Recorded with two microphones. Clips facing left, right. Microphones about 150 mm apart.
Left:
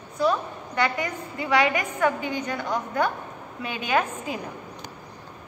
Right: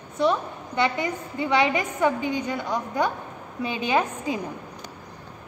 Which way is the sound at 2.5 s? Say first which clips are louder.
Right 1 dB; 15° right (ahead or behind).